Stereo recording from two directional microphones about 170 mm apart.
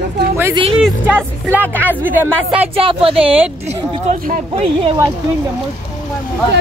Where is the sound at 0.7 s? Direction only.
5° right (ahead or behind).